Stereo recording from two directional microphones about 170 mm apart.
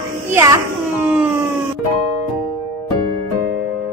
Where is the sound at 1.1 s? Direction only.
10° right (ahead or behind).